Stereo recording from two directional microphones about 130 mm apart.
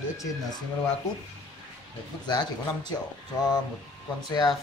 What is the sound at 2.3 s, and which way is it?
Speech, 35° left (ahead or behind).